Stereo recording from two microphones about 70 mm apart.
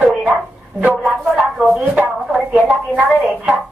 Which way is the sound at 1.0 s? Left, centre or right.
Centre.